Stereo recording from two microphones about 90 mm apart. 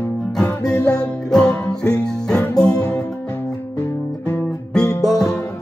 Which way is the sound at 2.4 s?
40° left (ahead or behind).